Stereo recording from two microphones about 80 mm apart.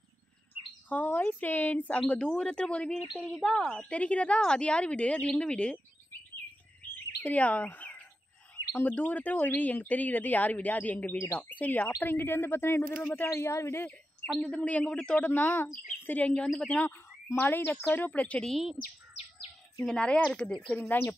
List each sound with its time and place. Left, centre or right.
0.8 s a woman's voice: left
7.2 s speech: centre; by 13.8 s left
13.8 s a woman's voice: centre
16.7 s speech: left
18.5 s speech: centre
19.8 s a woman's voice: centre